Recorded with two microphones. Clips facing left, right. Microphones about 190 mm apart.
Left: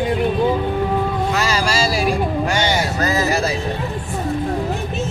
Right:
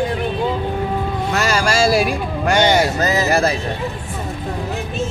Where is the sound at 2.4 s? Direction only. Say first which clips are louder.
Right 5 dB; 60° right (ahead or behind).